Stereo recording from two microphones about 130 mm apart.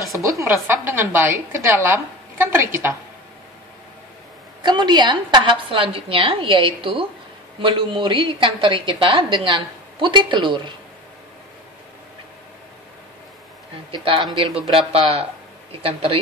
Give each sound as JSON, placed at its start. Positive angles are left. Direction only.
{"t": 0.4, "sound": "a woman's voice", "side_deg": -15}
{"t": 4.6, "sound": "a woman's voice", "side_deg": -35}
{"t": 13.9, "sound": "a woman's voice", "side_deg": -40}